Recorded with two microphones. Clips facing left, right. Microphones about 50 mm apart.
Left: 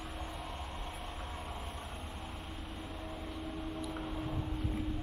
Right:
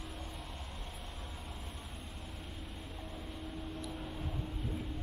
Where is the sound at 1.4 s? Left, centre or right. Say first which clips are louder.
Left 5 dB; centre.